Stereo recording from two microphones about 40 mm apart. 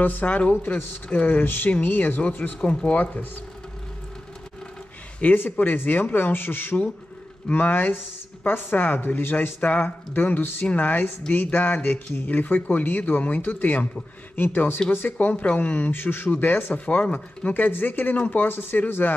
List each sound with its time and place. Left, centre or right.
0.0 s a woman's voice: left
2.9 s speech: left
5.2 s speech: left
6.3 s a woman's voice: left
9.6 s speech: left
10.1 s speech: left
11.3 s a woman's voice: left
15.1 s speech: left
15.9 s a woman's voice: left
16.7 s speech: left
17.6 s a woman's voice: left